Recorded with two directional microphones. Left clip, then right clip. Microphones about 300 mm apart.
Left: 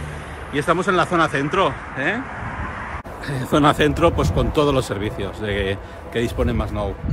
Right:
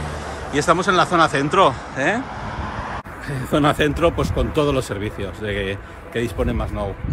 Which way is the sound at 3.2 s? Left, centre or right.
Centre.